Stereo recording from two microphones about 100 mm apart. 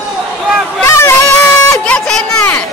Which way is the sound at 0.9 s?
25° left (ahead or behind).